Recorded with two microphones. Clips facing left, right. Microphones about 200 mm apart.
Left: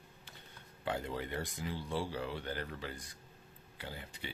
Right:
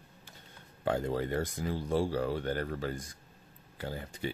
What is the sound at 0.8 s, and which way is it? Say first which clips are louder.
Speech: right 7 dB; 45° right (ahead or behind).